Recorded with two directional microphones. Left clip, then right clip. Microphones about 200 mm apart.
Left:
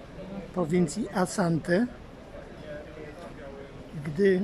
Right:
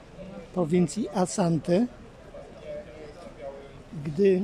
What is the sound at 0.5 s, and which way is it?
Speech, 10° right (ahead or behind).